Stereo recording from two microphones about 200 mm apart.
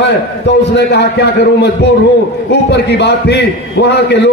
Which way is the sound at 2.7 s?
60° left (ahead or behind).